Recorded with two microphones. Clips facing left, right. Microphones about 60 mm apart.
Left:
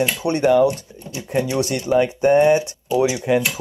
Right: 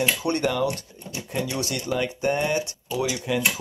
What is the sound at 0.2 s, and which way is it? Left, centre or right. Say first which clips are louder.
Speech: left 8 dB; centre.